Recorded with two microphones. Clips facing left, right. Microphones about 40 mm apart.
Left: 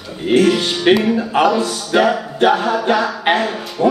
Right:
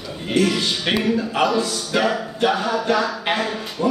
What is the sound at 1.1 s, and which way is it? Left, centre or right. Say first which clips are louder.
Speech: left 5 dB; left.